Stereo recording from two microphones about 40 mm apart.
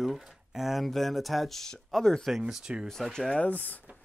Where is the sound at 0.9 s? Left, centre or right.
Centre.